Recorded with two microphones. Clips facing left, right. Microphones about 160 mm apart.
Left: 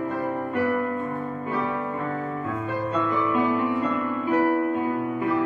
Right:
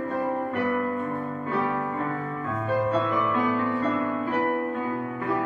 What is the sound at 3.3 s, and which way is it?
Music, 15° left (ahead or behind).